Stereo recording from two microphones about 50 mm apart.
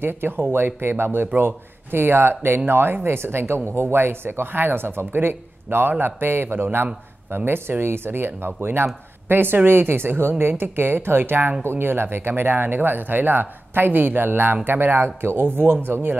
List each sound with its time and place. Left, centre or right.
0.0 s speech: right